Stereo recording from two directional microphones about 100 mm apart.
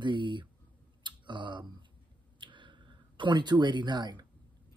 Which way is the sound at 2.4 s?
55° right (ahead or behind).